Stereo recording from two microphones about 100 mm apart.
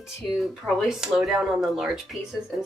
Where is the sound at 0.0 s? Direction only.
Centre (ahead or behind).